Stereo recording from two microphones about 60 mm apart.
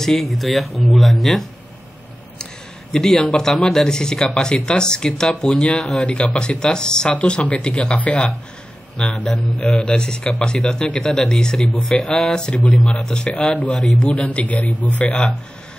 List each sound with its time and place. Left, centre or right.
0.0 s speech: centre
2.9 s speech: centre; by 15.2 s left